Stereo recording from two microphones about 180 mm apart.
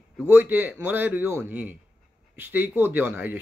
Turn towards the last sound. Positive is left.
turn(degrees=-10)  # may be behind; listen again after turning